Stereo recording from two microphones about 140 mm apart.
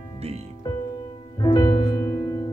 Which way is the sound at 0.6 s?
35° left (ahead or behind).